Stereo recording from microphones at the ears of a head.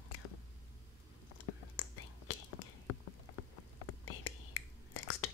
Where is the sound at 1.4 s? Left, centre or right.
Left.